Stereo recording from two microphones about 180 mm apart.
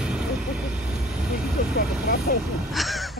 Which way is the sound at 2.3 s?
45° left (ahead or behind).